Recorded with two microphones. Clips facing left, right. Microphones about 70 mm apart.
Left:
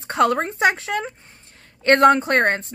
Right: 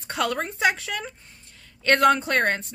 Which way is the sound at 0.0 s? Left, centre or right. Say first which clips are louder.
Left 7 dB; left.